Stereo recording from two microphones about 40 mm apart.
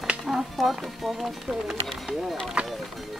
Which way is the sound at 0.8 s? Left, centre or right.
Centre.